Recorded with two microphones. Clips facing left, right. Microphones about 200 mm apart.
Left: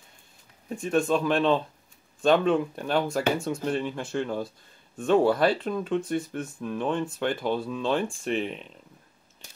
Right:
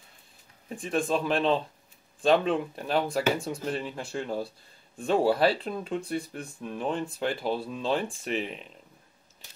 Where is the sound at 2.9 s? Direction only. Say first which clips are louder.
Left 1 dB; centre (ahead or behind).